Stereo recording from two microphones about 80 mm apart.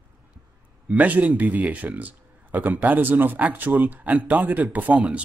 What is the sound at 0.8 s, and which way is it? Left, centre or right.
Speech, centre.